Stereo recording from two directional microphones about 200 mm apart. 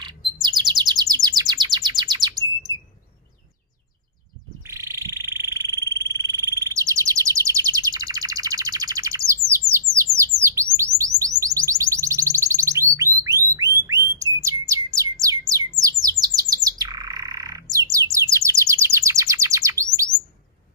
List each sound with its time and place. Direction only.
0.4 s bird: 20° right (ahead or behind)
4.6 s frog: 15° right (ahead or behind)
10.4 s bird: 15° right (ahead or behind)
11.0 s music: 15° right (ahead or behind)
15.8 s bird: 20° right (ahead or behind)